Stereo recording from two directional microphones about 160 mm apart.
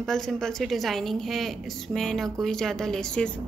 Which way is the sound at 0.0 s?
5° left (ahead or behind).